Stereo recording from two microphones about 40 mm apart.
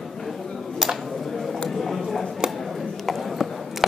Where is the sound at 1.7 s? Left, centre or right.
Centre.